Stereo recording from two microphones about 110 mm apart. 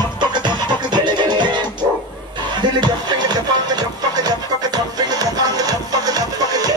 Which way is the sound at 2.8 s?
40° right (ahead or behind).